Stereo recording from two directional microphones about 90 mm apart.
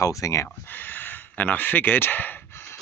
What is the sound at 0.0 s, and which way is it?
Speech, 35° left (ahead or behind).